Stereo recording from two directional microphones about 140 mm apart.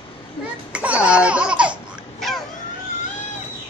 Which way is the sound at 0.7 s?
10° right (ahead or behind).